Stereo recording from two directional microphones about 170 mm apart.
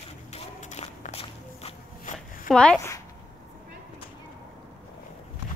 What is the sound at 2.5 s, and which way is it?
Speech, 5° left (ahead or behind).